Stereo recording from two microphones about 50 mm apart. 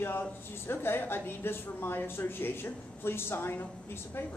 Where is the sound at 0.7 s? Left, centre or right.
Left.